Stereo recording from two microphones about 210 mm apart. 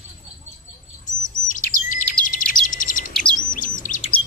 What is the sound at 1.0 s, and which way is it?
Chirp, 40° left (ahead or behind).